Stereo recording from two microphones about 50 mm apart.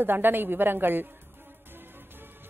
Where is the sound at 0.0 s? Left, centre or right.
Right.